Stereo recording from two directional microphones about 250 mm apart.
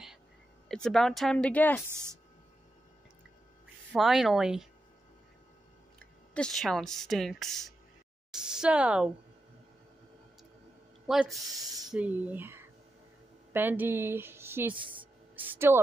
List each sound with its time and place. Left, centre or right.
0.7 s speech: centre
1.9 s a woman's voice: centre
3.9 s speech: centre
5.9 s speech: centre
11.1 s a woman's voice: centre